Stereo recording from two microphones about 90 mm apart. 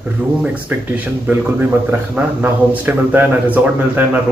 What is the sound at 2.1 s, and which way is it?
A man's voice, 20° right (ahead or behind).